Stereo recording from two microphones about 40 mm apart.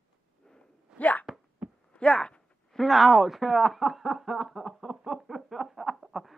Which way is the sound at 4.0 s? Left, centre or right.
Centre.